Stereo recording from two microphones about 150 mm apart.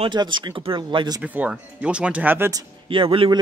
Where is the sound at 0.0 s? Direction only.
30° right (ahead or behind).